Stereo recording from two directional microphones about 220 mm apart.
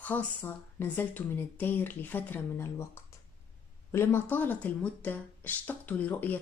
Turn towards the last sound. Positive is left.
turn(degrees=5)  # may be behind; listen again after turning